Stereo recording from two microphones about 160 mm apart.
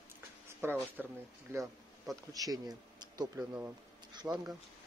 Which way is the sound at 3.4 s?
15° right (ahead or behind).